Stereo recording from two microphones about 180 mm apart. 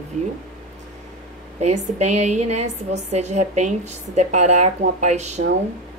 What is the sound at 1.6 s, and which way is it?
A woman's voice, 40° right (ahead or behind).